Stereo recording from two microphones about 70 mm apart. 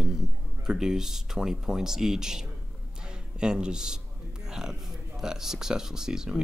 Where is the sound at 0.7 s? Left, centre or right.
Centre.